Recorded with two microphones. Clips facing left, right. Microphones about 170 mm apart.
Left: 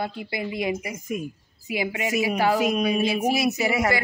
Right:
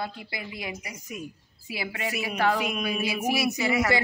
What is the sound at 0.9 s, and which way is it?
Speech, 50° left (ahead or behind).